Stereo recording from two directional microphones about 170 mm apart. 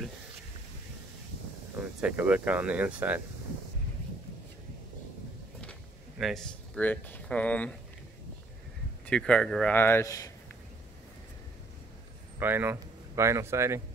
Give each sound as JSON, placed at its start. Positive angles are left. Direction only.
{"t": 2.0, "sound": "speech", "side_deg": -10}
{"t": 5.6, "sound": "a sound", "side_deg": 5}
{"t": 9.0, "sound": "a man's voice", "side_deg": 5}
{"t": 12.4, "sound": "speech", "side_deg": -10}